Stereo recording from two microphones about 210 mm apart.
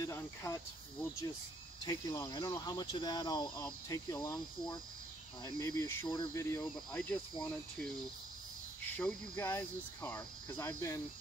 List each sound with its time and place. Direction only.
0.0 s speech: 15° left (ahead or behind)
1.9 s speech: 20° left (ahead or behind); by 7.9 s 5° left (ahead or behind)
8.9 s speech: 5° left (ahead or behind)